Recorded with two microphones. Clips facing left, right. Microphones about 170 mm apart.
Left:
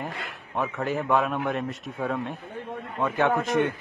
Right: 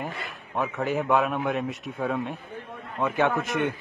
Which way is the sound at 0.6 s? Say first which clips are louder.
Right 1 dB; centre (ahead or behind).